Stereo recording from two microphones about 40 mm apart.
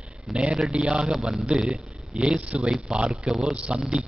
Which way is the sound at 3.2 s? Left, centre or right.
Centre.